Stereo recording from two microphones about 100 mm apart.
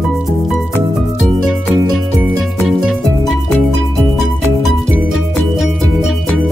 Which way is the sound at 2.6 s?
Centre (ahead or behind).